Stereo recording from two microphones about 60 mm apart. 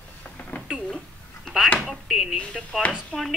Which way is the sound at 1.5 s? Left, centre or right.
Centre.